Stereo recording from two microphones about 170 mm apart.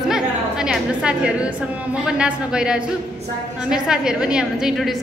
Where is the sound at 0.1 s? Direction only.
5° right (ahead or behind).